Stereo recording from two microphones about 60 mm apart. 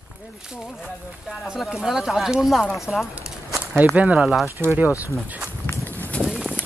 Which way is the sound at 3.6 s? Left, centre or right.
Right.